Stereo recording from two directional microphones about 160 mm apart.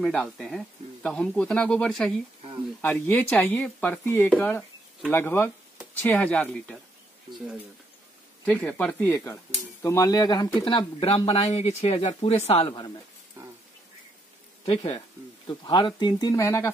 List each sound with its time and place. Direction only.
0.0 s speech: centre (ahead or behind)
8.5 s speech: 10° left (ahead or behind)
9.1 s speech: 20° left (ahead or behind)
14.6 s speech: 35° left (ahead or behind); by 16.7 s 20° left (ahead or behind)